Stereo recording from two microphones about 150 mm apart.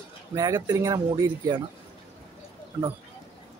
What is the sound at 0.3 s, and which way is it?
Speech, 20° right (ahead or behind).